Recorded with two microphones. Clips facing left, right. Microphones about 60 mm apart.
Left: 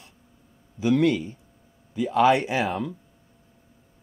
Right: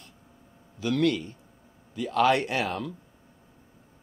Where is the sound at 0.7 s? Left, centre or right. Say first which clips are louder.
Left 4 dB; centre.